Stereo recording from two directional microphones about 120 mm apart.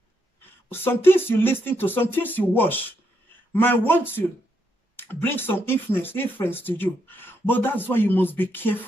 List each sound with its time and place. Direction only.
0.7 s speech: 20° left (ahead or behind)